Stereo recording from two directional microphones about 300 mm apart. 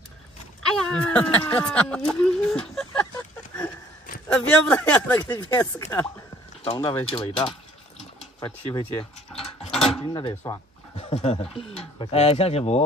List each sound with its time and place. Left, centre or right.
0.7 s speech: centre
4.3 s speech: centre
6.6 s speech: centre
9.4 s a sound: centre
10.1 s speech: centre